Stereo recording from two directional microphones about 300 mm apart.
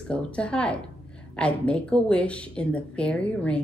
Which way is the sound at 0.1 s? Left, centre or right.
Centre.